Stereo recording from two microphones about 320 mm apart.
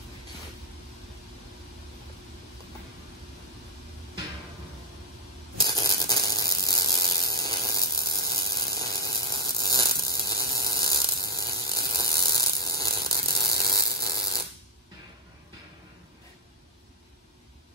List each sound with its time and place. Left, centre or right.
5.6 s ratchet: centre
6.8 s hum: centre
13.6 s mains hum: centre